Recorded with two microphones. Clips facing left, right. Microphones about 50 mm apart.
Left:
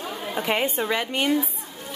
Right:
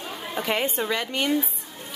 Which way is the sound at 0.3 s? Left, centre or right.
Centre.